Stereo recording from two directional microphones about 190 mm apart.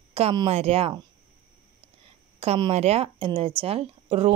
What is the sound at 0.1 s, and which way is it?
Speech, 30° right (ahead or behind).